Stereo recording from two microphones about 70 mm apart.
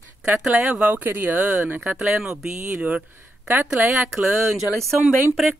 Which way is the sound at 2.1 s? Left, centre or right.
Centre.